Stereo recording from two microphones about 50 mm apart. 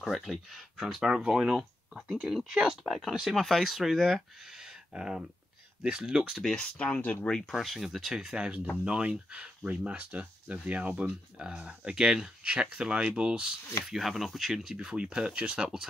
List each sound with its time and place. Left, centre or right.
0.0 s speech: centre
3.3 s speech: centre
4.6 s a sound: centre
5.8 s speech: centre
6.5 s speech: left
7.5 s speech: centre
8.2 s speech: centre
13.8 s speech: centre